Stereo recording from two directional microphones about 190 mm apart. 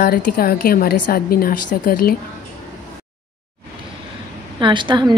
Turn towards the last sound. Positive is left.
turn(degrees=-25)  # may be behind; listen again after turning